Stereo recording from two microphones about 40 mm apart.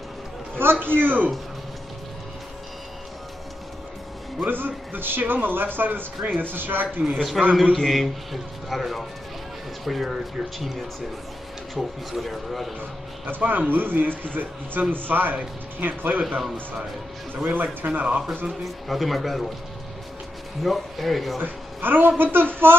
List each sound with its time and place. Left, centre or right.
0.6 s a man's voice: right
4.4 s speech: right
7.4 s speech: centre
13.3 s speech: right
17.4 s speech: right
18.6 s speech: centre
20.6 s speech: centre
21.4 s speech: right